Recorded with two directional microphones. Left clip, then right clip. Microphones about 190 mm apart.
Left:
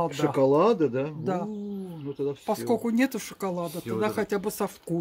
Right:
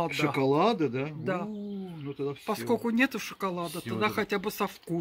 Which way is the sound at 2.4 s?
20° left (ahead or behind).